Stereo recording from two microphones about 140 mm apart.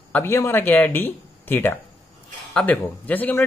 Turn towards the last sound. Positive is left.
turn(degrees=10)  # may be behind; listen again after turning